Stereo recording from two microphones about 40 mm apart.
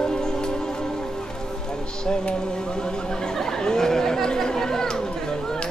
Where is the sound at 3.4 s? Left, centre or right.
Centre.